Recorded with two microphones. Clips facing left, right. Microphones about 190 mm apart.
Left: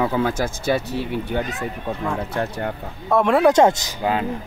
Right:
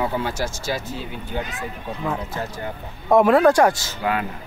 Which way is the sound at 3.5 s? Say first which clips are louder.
Left 1 dB; 20° left (ahead or behind).